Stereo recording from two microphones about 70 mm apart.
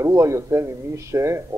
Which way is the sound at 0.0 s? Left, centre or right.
Right.